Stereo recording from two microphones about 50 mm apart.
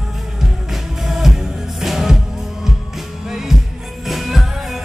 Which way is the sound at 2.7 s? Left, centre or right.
Centre.